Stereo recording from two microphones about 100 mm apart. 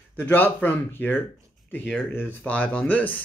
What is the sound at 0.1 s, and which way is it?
Speech, 20° left (ahead or behind).